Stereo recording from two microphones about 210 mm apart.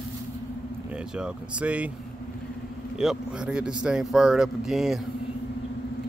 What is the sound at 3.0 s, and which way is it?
Speech, centre (ahead or behind).